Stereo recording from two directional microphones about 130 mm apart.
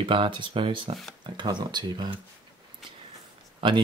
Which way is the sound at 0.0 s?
40° right (ahead or behind).